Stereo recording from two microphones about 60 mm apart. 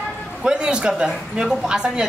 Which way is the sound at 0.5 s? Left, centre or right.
Centre.